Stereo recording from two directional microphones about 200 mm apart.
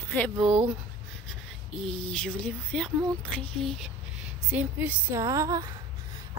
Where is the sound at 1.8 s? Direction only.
5° left (ahead or behind).